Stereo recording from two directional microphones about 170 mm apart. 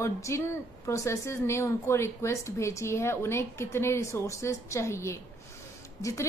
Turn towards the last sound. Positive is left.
turn(degrees=20)  # may be behind; listen again after turning